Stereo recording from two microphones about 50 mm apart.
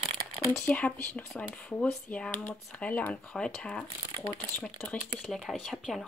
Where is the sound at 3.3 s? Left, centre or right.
Centre.